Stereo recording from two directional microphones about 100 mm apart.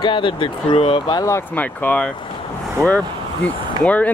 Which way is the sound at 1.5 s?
15° left (ahead or behind).